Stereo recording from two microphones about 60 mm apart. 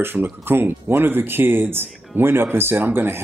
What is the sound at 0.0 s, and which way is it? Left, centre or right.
Speech, right.